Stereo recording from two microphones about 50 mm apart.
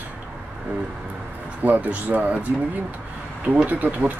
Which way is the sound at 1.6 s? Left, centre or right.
Right.